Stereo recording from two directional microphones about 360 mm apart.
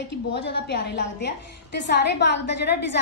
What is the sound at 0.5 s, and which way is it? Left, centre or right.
Speech, left.